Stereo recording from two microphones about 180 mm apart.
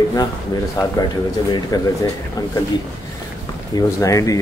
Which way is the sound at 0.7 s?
20° left (ahead or behind).